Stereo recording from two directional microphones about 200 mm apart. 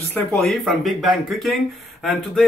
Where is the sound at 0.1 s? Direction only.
5° left (ahead or behind).